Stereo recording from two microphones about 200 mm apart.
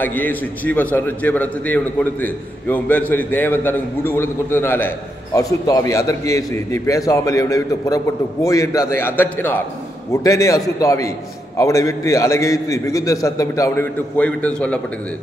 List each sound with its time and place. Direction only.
0.0 s a man's voice: 10° left (ahead or behind)